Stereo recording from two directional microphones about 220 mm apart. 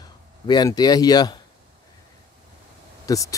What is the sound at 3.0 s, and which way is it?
Speech, 15° left (ahead or behind).